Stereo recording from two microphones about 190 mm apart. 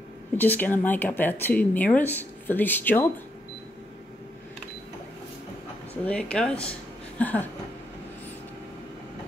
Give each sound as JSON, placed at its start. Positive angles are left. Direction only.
{"t": 0.4, "sound": "speech", "side_deg": 10}
{"t": 6.0, "sound": "speech", "side_deg": 5}